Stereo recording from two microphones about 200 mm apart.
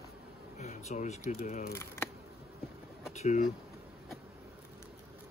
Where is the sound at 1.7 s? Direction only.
10° left (ahead or behind).